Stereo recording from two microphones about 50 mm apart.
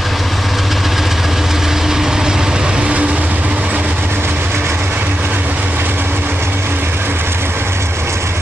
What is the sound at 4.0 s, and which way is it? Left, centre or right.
Train, right.